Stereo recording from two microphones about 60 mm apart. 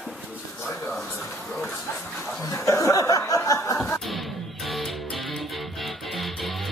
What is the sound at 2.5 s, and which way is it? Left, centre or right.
Chuckle, left.